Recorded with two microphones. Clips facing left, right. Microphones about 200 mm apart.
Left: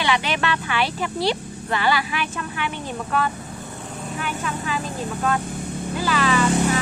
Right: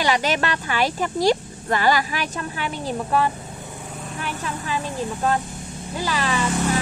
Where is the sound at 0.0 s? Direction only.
40° right (ahead or behind).